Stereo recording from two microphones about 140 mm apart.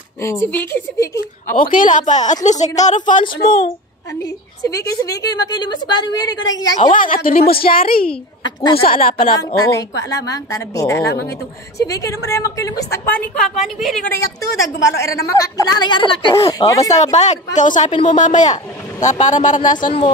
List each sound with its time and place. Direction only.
0.2 s a woman's voice: 20° left (ahead or behind)
1.6 s a woman's voice: 70° left (ahead or behind)
3.3 s speech: 90° left
4.6 s a woman's voice: 25° left (ahead or behind)
6.8 s speech: 70° left (ahead or behind); by 8.1 s 90° left
8.5 s speech: 30° left (ahead or behind)
8.8 s speech: 90° left
9.6 s a woman's voice: 25° left (ahead or behind)
13.6 s a woman's voice: centre (ahead or behind)
14.4 s a woman's voice: 20° left (ahead or behind); by 16.5 s 35° left (ahead or behind)
16.5 s a woman's voice: 25° left (ahead or behind)
16.9 s a man's voice: 55° left (ahead or behind)